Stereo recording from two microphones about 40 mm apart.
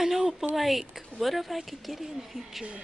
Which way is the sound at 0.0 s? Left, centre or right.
Centre.